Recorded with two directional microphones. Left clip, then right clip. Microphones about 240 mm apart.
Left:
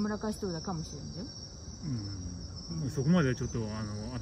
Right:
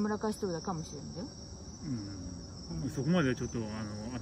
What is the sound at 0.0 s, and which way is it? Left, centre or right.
Speech, centre.